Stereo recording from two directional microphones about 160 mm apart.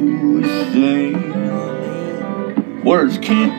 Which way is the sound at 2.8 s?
35° right (ahead or behind).